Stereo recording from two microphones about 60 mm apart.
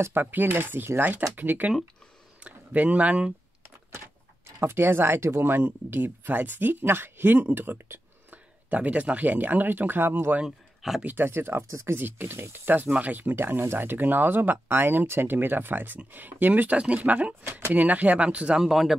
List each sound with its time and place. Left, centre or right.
0.1 s speech: right
4.6 s speech: right
10.4 s speech: centre
11.1 s speech: right
12.8 s speech: centre
13.1 s speech: right
17.7 s speech: right
18.6 s speech: centre